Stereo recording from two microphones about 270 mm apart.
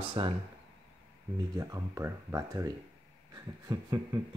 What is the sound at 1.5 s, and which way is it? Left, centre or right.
Speech, centre.